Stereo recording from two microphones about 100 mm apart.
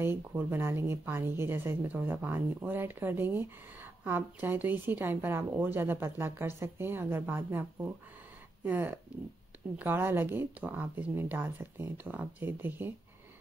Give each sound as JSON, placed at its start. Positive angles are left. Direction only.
{"t": 0.0, "sound": "speech", "side_deg": -25}